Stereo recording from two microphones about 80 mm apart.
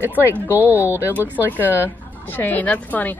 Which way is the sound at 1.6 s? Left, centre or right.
Left.